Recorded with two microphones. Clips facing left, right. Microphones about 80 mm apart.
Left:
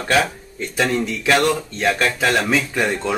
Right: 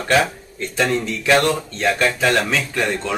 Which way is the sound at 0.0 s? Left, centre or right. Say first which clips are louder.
Right 1 dB; centre.